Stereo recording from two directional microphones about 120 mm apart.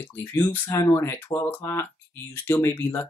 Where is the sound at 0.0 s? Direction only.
20° left (ahead or behind).